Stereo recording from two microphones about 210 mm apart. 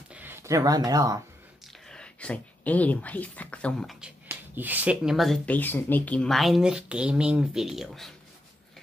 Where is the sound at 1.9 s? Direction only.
5° left (ahead or behind).